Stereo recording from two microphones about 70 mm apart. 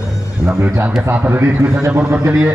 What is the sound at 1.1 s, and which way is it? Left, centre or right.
Speech, right.